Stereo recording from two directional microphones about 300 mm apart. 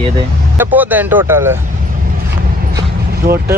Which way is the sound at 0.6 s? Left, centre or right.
Centre.